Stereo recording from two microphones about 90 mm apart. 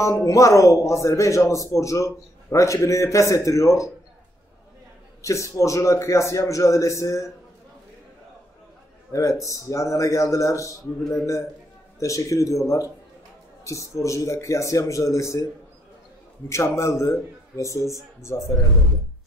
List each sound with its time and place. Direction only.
0.0 s speech: 35° left (ahead or behind)
5.2 s speech: 35° left (ahead or behind)
9.1 s speech: 35° left (ahead or behind)
16.4 s speech: 30° left (ahead or behind)